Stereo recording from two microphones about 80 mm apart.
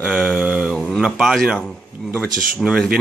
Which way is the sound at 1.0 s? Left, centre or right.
Centre.